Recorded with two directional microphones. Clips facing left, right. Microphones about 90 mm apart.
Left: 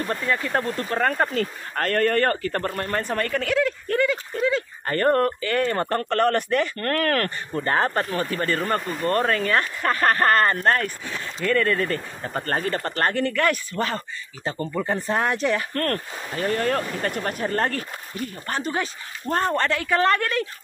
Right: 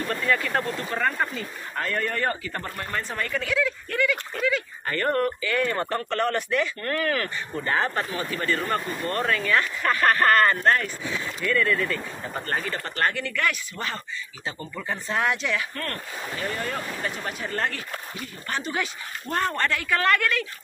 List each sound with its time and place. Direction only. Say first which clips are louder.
0.1 s speech: even; 25° left (ahead or behind)
1.0 s speech: left 3 dB; 45° left (ahead or behind)
1.3 s speech: left 6 dB; 60° left (ahead or behind)
3.9 s speech: left 4 dB; 35° left (ahead or behind)
15.7 s speech: left 7 dB; 60° left (ahead or behind); by 20.4 s 35° left (ahead or behind)